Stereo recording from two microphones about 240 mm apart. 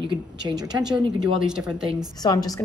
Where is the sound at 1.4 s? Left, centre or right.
Centre.